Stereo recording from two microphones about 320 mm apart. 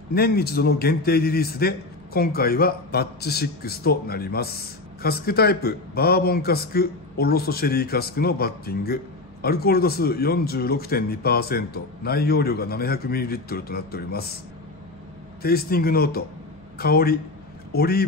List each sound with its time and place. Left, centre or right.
0.1 s a man's voice: left
15.4 s a man's voice: left